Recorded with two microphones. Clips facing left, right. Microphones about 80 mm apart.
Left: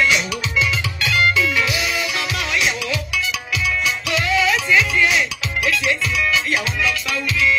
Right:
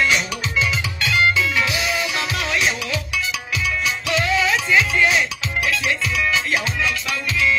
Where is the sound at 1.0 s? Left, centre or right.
Right.